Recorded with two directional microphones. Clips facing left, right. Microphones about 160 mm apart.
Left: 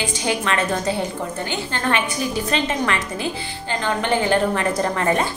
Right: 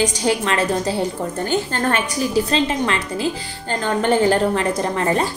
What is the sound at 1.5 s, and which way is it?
Speech, 45° right (ahead or behind).